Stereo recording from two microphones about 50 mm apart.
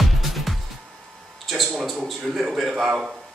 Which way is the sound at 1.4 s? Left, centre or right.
Centre.